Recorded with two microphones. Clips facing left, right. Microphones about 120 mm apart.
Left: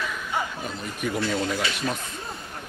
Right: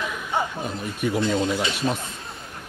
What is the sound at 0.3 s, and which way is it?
Chuckle, 30° right (ahead or behind).